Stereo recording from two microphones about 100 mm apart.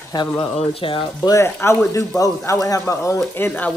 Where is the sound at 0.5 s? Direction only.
65° left (ahead or behind).